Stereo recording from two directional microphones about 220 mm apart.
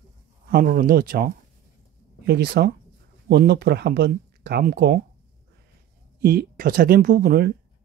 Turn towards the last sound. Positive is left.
turn(degrees=-45)  # may be behind; listen again after turning